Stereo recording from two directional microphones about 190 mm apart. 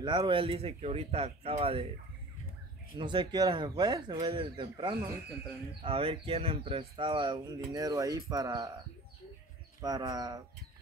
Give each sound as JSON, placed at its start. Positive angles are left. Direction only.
{"t": 0.0, "sound": "speech", "side_deg": -25}
{"t": 3.0, "sound": "speech", "side_deg": -25}
{"t": 9.8, "sound": "speech", "side_deg": -20}